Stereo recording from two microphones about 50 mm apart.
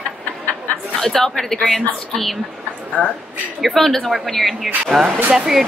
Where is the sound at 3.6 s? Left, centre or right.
Centre.